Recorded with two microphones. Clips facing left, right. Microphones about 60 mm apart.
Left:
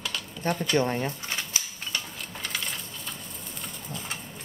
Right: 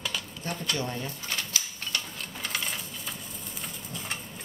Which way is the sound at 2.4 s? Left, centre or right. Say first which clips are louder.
Right 1 dB; centre.